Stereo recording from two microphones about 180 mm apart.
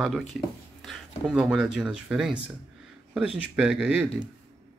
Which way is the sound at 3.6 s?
5° right (ahead or behind).